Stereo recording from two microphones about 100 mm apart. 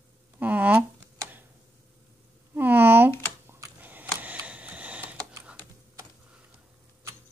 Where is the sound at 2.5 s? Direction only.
20° right (ahead or behind).